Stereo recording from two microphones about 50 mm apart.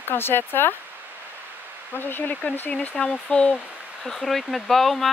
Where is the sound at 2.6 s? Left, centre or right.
Left.